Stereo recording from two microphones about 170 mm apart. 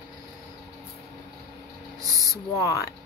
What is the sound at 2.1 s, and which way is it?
Speech, 20° right (ahead or behind).